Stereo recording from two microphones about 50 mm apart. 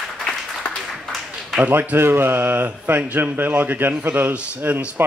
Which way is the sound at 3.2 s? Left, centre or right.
Right.